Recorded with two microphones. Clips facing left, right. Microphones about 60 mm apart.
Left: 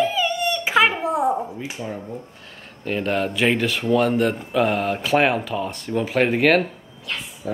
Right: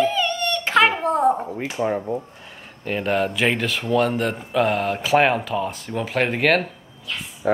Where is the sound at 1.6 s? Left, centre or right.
Right.